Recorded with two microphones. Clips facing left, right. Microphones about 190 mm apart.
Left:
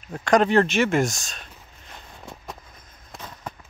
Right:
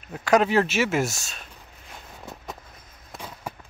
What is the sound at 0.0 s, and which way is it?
Speech, 5° right (ahead or behind).